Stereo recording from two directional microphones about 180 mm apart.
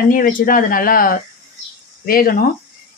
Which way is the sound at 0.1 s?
50° left (ahead or behind).